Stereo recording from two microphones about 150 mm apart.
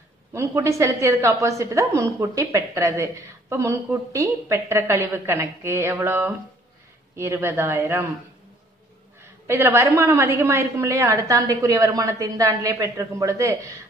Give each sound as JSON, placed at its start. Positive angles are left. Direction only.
{"t": 0.3, "sound": "a woman's voice", "side_deg": -20}
{"t": 9.5, "sound": "a woman's voice", "side_deg": -15}